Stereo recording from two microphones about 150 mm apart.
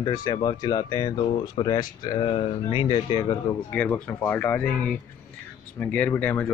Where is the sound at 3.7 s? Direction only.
10° left (ahead or behind).